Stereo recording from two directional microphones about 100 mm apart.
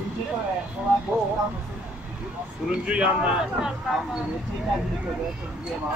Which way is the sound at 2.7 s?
15° right (ahead or behind).